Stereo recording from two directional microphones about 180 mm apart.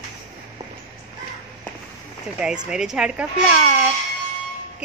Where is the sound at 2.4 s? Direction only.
5° right (ahead or behind).